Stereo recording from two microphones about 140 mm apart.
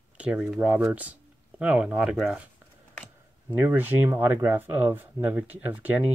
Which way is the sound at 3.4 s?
15° right (ahead or behind).